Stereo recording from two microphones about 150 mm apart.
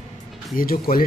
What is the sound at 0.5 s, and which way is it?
Speech, 75° left (ahead or behind).